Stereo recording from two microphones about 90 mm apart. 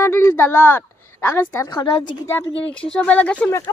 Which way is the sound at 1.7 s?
60° left (ahead or behind).